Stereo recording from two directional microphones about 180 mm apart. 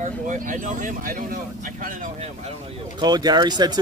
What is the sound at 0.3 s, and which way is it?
Speech, 45° right (ahead or behind).